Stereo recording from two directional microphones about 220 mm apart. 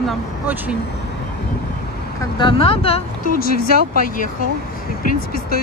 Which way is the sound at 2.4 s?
25° left (ahead or behind).